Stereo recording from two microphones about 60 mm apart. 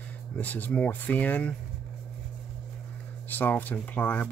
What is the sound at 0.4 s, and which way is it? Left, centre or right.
Speech, left.